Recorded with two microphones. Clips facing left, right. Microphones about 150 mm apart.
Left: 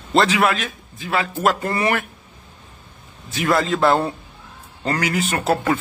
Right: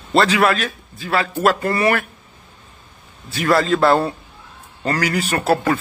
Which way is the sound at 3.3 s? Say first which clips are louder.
Right 3 dB; 20° left (ahead or behind).